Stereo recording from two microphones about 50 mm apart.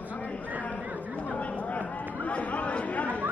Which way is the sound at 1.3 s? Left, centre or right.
Left.